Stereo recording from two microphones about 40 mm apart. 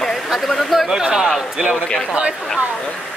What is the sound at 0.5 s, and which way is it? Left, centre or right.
Speech, centre.